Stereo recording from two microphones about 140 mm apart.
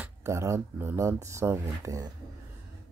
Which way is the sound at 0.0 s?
20° right (ahead or behind).